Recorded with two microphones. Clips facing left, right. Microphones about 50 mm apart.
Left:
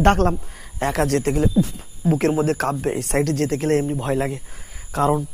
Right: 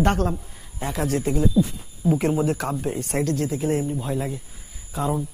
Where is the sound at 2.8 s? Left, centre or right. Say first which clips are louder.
Left 4 dB; left.